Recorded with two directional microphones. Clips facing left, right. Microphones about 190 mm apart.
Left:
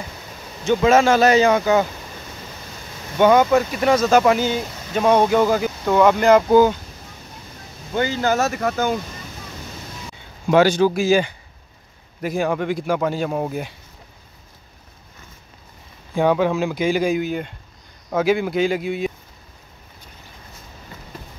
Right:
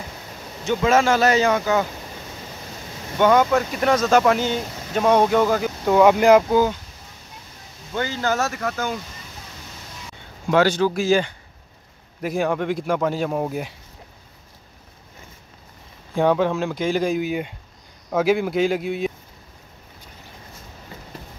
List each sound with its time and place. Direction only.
0.7 s speech: 20° left (ahead or behind)
3.2 s speech: 15° left (ahead or behind)
5.9 s speech: 10° right (ahead or behind)
7.9 s speech: 15° left (ahead or behind)
8.5 s speech: 30° left (ahead or behind)
10.5 s speech: 15° left (ahead or behind)
16.2 s speech: 5° left (ahead or behind)
17.2 s speech: 5° right (ahead or behind)